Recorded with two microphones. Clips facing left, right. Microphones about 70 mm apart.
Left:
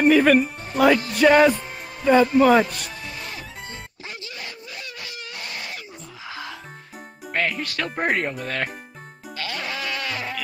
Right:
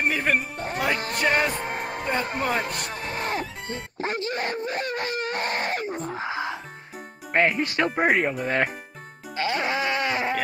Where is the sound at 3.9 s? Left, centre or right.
Right.